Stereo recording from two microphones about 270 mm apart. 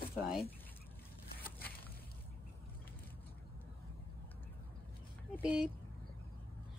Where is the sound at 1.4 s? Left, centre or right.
Left.